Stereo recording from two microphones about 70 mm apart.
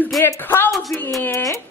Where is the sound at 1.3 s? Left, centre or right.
Left.